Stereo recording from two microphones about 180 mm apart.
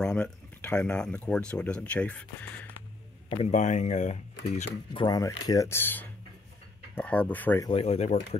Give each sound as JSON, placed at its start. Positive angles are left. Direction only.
{"t": 0.0, "sound": "speech", "side_deg": 5}
{"t": 3.3, "sound": "speech", "side_deg": 30}
{"t": 3.5, "sound": "speech", "side_deg": 40}
{"t": 4.9, "sound": "speech", "side_deg": 20}
{"t": 7.7, "sound": "speech", "side_deg": 35}